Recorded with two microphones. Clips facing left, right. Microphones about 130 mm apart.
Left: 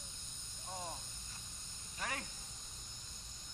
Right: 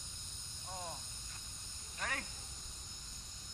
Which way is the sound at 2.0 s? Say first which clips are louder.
Even; 20° left (ahead or behind).